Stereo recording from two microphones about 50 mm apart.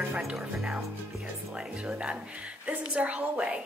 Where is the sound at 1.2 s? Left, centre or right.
Right.